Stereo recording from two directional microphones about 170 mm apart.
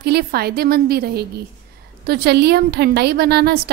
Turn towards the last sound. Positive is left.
turn(degrees=-70)  # may be behind; listen again after turning